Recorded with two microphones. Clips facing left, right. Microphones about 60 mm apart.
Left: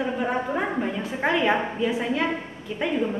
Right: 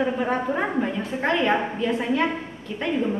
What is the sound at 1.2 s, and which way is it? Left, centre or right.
Speech, centre.